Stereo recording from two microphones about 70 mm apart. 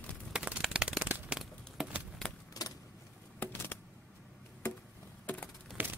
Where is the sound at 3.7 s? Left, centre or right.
Left.